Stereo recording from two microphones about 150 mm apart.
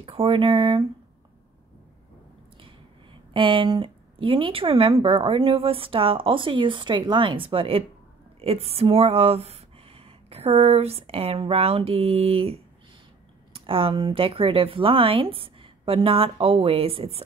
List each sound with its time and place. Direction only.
0.0 s speech: 35° right (ahead or behind)
3.3 s speech: 35° right (ahead or behind)